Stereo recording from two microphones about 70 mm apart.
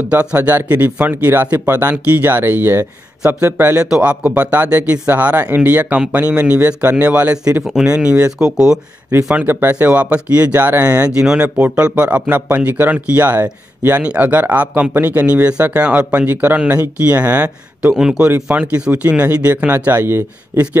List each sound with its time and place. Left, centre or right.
0.1 s speech: right
3.8 s speech: centre
9.5 s speech: right
11.1 s speech: centre
11.4 s speech: right
17.9 s speech: centre; by 20.7 s right